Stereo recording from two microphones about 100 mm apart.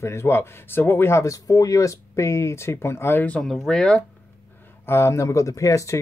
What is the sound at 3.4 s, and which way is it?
Speech, 5° left (ahead or behind).